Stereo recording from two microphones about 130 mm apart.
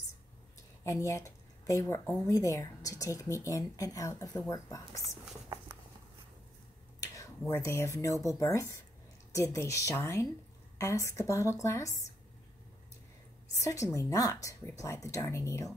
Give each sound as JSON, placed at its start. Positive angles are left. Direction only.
{"t": 0.8, "sound": "speech", "side_deg": 25}
{"t": 7.0, "sound": "speech", "side_deg": 25}
{"t": 13.6, "sound": "speech", "side_deg": 25}